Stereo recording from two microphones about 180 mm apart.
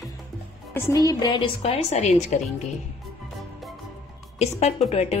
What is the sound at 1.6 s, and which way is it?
Speech, 40° left (ahead or behind).